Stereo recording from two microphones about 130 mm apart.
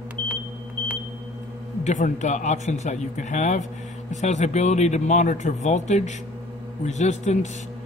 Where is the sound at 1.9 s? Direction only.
70° left (ahead or behind).